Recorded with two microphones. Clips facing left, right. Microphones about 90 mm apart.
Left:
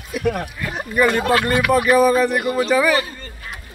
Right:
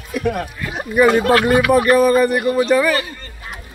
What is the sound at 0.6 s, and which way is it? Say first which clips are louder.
Speech: right 3 dB; 5° right (ahead or behind).